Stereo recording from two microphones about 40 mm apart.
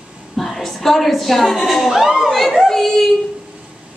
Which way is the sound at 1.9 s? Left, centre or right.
Centre.